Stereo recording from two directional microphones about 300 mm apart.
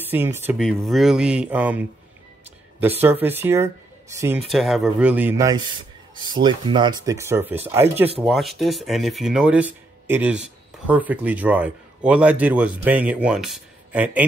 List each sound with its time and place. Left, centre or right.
0.0 s speech: centre